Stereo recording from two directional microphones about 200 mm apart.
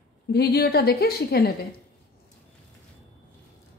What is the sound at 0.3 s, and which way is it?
A woman's voice, 50° left (ahead or behind).